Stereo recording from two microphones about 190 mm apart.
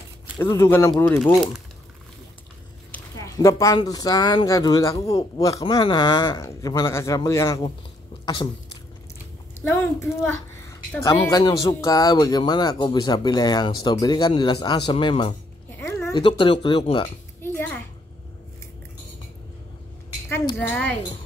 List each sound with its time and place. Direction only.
0.4 s speech: 10° left (ahead or behind)
3.2 s speech: 15° left (ahead or behind)
9.7 s a child's voice: 15° left (ahead or behind)
20.2 s speech: 10° left (ahead or behind)